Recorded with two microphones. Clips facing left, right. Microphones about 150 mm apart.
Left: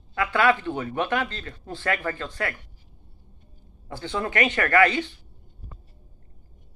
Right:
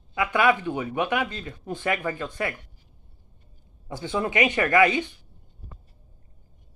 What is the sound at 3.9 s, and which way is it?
Speech, 15° right (ahead or behind).